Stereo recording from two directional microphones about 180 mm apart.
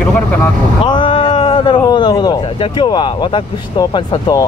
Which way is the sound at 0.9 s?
30° left (ahead or behind).